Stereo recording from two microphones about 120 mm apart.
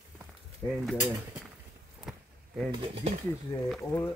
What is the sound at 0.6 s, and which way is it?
Speech, 20° left (ahead or behind).